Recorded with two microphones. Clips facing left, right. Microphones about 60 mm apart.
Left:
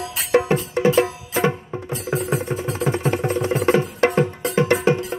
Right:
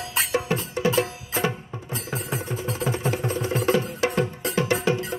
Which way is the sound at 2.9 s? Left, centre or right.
Left.